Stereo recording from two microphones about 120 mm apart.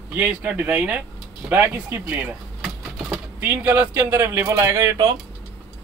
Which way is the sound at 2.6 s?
Centre (ahead or behind).